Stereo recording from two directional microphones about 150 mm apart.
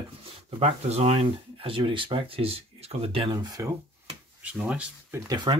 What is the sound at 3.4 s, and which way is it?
Speech, 25° right (ahead or behind).